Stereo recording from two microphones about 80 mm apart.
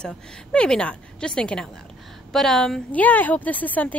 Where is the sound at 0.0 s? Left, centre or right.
Centre.